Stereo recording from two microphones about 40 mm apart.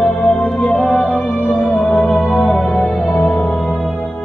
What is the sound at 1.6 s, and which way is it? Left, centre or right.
Music, left.